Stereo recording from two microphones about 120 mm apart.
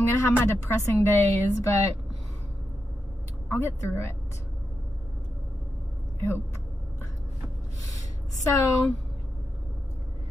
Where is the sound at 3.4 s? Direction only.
20° left (ahead or behind).